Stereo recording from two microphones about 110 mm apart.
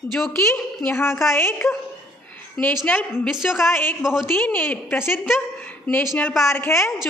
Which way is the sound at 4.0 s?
5° right (ahead or behind).